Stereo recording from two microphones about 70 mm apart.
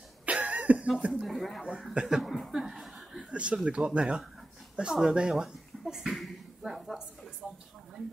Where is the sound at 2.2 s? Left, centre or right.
Centre.